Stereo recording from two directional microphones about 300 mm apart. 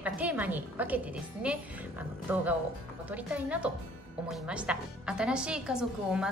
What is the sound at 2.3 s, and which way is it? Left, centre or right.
Speech, centre.